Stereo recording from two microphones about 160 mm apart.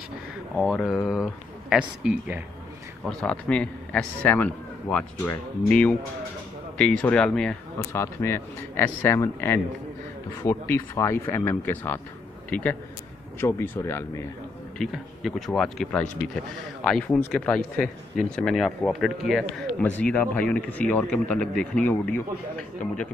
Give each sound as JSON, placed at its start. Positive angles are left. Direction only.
{"t": 0.6, "sound": "speech", "side_deg": 0}
{"t": 3.1, "sound": "a man's voice", "side_deg": 5}
{"t": 7.9, "sound": "a man's voice", "side_deg": 15}
{"t": 14.8, "sound": "a man's voice", "side_deg": 0}
{"t": 19.8, "sound": "a man's voice", "side_deg": 10}